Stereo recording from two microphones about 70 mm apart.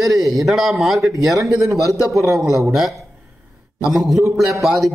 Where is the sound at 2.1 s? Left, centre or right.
Right.